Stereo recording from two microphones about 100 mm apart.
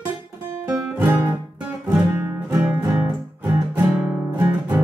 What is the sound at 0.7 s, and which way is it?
Music, 20° right (ahead or behind).